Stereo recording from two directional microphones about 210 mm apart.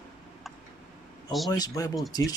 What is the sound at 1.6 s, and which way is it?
Speech, 15° left (ahead or behind).